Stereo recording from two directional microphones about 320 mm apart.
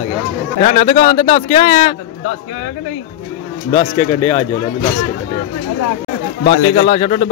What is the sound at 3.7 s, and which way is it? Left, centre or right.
Speech, centre.